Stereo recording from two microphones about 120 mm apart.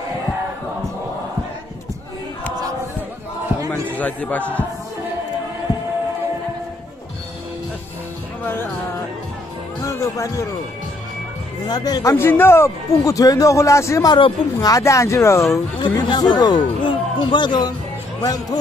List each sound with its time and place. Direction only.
3.9 s a man's voice: 15° left (ahead or behind)
9.8 s speech: 25° left (ahead or behind)
11.6 s speech: 35° left (ahead or behind)
14.1 s speech: 35° left (ahead or behind)
15.8 s speech: 40° left (ahead or behind)